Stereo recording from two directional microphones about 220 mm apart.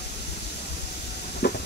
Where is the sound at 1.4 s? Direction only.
50° left (ahead or behind).